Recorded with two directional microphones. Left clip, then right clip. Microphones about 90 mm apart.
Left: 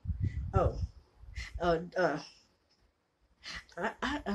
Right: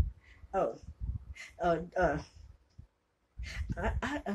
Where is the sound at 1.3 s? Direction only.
20° left (ahead or behind).